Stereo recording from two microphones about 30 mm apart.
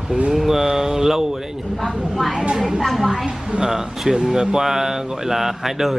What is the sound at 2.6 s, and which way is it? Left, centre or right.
Speech, centre.